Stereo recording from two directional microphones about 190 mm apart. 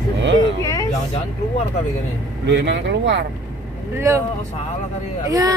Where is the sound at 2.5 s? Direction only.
70° right (ahead or behind).